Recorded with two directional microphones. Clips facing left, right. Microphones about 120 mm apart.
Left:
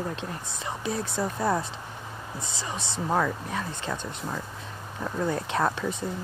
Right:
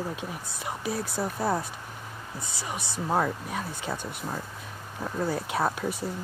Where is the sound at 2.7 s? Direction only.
25° left (ahead or behind).